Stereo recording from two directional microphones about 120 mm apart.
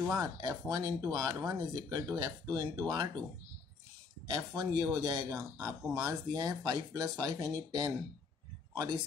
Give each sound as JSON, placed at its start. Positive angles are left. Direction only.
{"t": 0.1, "sound": "speech", "side_deg": -35}
{"t": 4.3, "sound": "speech", "side_deg": -30}